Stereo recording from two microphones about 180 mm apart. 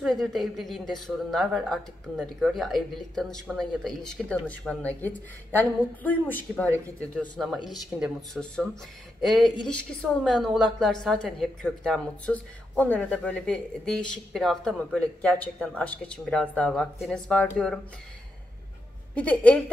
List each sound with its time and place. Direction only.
0.0 s a woman's voice: centre (ahead or behind)
7.2 s a woman's voice: centre (ahead or behind)
19.1 s speech: 5° left (ahead or behind)